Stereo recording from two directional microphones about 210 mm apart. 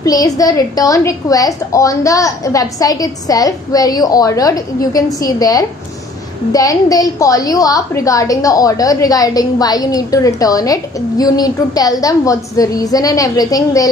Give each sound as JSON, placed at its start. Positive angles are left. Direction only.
{"t": 0.0, "sound": "a woman's voice", "side_deg": 15}